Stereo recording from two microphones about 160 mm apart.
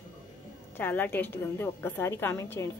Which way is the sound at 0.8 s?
10° left (ahead or behind).